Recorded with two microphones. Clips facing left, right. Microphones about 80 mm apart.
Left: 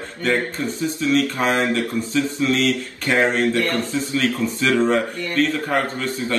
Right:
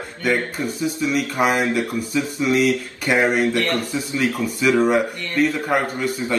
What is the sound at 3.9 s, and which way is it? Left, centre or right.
A man's voice, centre.